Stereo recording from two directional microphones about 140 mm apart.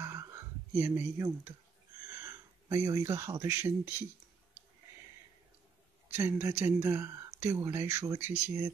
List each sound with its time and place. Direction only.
0.0 s a sound: 20° right (ahead or behind)
2.2 s speech: 25° right (ahead or behind)
6.1 s speech: 20° right (ahead or behind)